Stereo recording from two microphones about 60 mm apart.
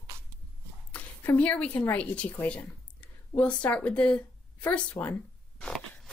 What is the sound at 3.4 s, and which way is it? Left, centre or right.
Speech, left.